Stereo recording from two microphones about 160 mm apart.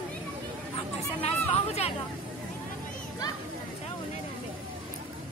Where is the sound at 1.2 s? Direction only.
40° left (ahead or behind).